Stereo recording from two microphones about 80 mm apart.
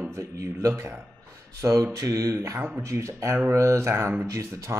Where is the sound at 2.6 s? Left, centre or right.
Centre.